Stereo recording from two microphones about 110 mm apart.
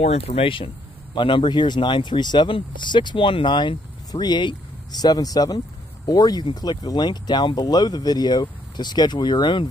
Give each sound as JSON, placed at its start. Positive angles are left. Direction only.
{"t": 0.0, "sound": "speech", "side_deg": 70}